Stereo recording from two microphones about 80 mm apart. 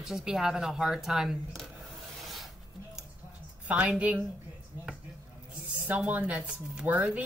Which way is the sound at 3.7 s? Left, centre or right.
Centre.